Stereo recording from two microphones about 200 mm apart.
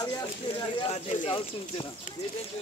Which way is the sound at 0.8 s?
30° left (ahead or behind).